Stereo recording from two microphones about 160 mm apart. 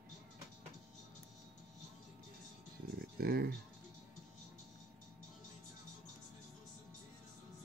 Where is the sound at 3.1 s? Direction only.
75° right (ahead or behind).